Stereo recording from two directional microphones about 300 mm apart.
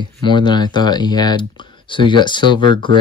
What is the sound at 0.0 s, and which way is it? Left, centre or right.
Speech, centre.